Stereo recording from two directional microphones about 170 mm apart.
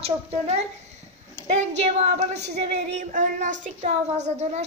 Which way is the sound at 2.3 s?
80° right.